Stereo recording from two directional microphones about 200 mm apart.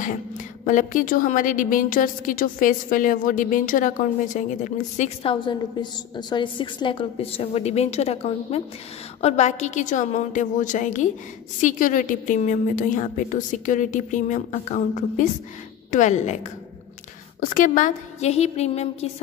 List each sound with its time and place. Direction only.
0.0 s a woman's voice: 40° left (ahead or behind)
17.4 s a woman's voice: 40° left (ahead or behind)